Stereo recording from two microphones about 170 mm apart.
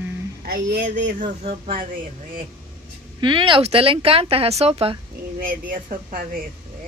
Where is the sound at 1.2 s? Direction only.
35° right (ahead or behind).